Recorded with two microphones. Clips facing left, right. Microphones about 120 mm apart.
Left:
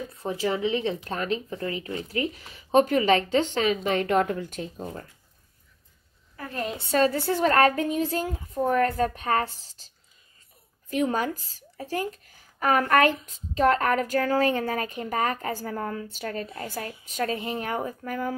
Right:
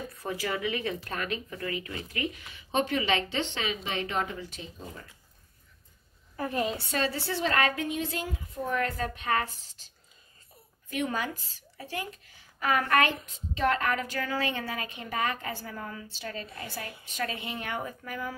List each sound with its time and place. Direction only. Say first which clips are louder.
0.1 s speech: left 6 dB; 25° left (ahead or behind); by 5.0 s 50° left (ahead or behind)
6.9 s speech: left 8 dB; 45° left (ahead or behind)
10.9 s speech: left 6 dB; 35° left (ahead or behind)